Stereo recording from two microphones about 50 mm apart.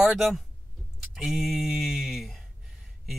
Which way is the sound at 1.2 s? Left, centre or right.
Centre.